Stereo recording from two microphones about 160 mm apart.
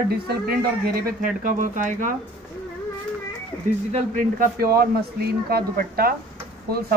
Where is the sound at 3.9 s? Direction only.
55° right (ahead or behind).